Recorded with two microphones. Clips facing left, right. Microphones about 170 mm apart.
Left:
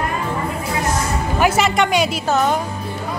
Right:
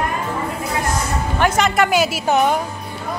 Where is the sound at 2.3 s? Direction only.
15° right (ahead or behind).